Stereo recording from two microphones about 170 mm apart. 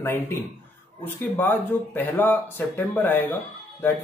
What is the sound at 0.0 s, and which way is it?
Speech, 15° left (ahead or behind).